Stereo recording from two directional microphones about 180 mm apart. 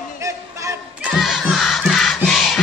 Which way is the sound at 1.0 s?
Centre (ahead or behind).